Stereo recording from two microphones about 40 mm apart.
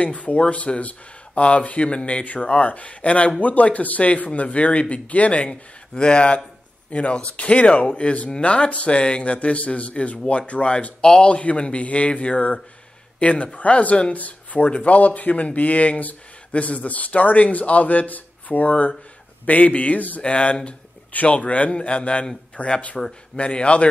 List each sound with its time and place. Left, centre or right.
0.0 s a man's voice: left
20.2 s a man's voice: left